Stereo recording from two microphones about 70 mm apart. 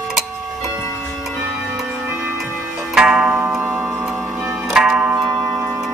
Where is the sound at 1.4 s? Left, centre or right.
Centre.